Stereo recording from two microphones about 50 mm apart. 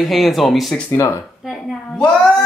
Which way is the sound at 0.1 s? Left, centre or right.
Centre.